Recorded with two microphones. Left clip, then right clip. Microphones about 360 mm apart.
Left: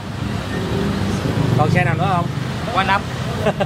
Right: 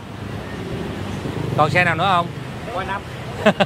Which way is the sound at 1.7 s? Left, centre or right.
Right.